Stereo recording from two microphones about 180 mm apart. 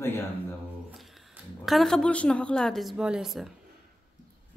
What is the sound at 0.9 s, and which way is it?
Speech, centre (ahead or behind).